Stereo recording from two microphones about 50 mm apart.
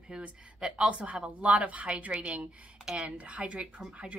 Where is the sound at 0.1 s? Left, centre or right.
Right.